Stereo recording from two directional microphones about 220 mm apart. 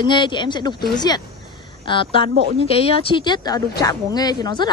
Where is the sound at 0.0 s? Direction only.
20° left (ahead or behind).